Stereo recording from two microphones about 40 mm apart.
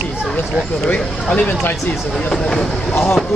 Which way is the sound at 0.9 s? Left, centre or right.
Left.